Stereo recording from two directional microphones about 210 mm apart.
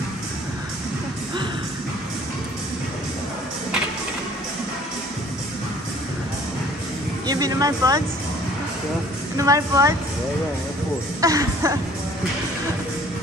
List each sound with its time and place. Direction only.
7.2 s speech: 20° right (ahead or behind)
9.4 s speech: 15° right (ahead or behind)
11.1 s speech: 15° right (ahead or behind)